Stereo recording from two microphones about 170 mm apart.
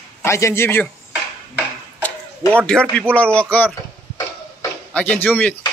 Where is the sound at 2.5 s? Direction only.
5° left (ahead or behind).